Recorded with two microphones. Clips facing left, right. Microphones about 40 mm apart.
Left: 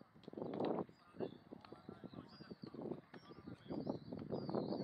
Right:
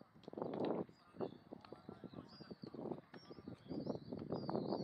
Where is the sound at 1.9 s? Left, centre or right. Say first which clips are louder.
Even; left.